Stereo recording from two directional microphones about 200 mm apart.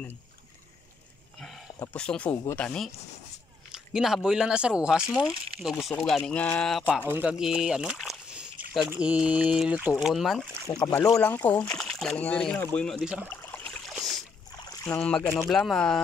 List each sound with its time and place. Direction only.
2.0 s speech: 5° left (ahead or behind)
7.1 s speech: 5° right (ahead or behind)
10.5 s speech: 10° left (ahead or behind); by 13.3 s 5° right (ahead or behind)
13.3 s a sound: 10° left (ahead or behind)
14.6 s rowboat: 15° left (ahead or behind)
15.0 s speech: 5° left (ahead or behind)